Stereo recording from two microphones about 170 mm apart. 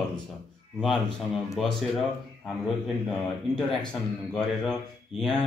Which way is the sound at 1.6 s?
Centre (ahead or behind).